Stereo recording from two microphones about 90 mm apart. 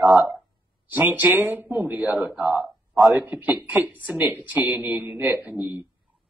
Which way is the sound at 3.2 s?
20° right (ahead or behind).